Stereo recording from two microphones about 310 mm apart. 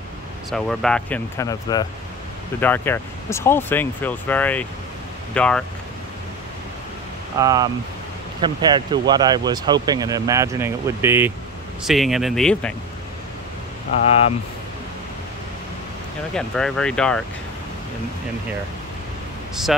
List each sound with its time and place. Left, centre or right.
0.5 s speech: centre
7.3 s speech: centre
16.3 s speech: centre